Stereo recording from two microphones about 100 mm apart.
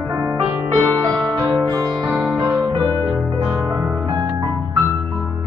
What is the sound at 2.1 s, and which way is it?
Music, centre (ahead or behind).